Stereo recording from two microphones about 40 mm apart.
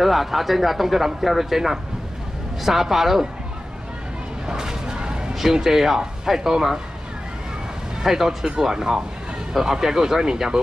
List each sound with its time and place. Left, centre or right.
0.0 s speech: centre
4.5 s a sound: centre
5.3 s speech: centre
8.0 s speech: centre